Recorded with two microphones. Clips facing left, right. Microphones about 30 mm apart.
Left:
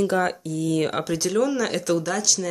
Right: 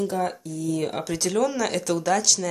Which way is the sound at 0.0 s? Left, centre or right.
Left.